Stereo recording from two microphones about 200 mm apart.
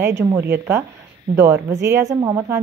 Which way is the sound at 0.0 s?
15° right (ahead or behind).